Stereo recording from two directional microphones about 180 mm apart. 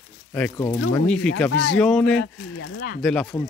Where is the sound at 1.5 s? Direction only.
85° left.